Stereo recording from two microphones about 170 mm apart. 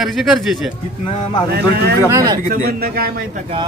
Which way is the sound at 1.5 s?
65° right (ahead or behind).